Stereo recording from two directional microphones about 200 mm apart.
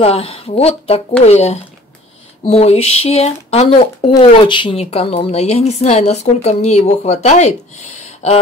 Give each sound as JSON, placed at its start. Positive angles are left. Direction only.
{"t": 0.0, "sound": "a woman's voice", "side_deg": 30}